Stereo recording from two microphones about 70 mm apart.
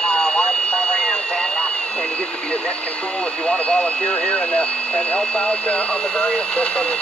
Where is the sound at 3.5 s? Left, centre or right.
Centre.